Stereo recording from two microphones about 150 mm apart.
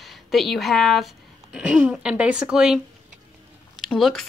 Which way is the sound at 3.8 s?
Centre (ahead or behind).